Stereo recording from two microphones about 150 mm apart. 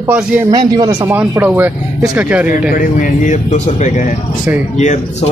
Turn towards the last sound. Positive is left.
turn(degrees=55)  # may be behind; listen again after turning